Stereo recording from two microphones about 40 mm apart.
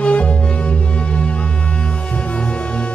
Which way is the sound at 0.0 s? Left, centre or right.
Left.